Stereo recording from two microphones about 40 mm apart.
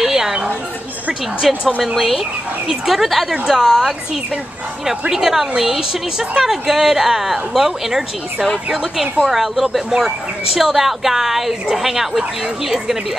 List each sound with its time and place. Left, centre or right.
0.0 s a sound: centre
1.5 s a woman's voice: centre
2.0 s a woman's voice: centre
5.1 s a woman's voice: centre